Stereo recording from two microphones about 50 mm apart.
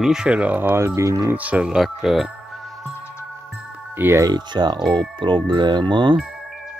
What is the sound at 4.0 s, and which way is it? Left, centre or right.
Speech, right.